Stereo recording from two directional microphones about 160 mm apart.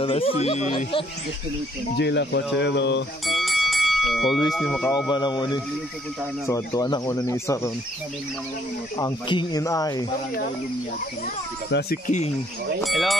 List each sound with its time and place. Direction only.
0.0 s speech: 35° left (ahead or behind)
2.0 s speech: 90° left
3.3 s bell: centre (ahead or behind)
4.6 s speech: 5° left (ahead or behind)
4.9 s speech: 25° left (ahead or behind)
8.9 s speech: 25° left (ahead or behind)
11.7 s speech: 90° left
12.1 s speech: 50° left (ahead or behind)
12.8 s speech: centre (ahead or behind)